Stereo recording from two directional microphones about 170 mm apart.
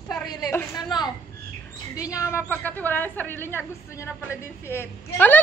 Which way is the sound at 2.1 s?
20° left (ahead or behind).